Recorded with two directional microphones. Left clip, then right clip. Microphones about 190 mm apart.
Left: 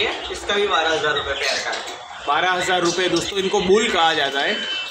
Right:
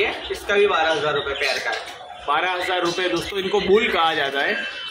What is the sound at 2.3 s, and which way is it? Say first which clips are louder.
Speech: left 3 dB; 10° left (ahead or behind).